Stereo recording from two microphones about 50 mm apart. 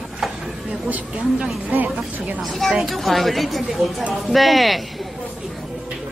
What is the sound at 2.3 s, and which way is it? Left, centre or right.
Speech, centre.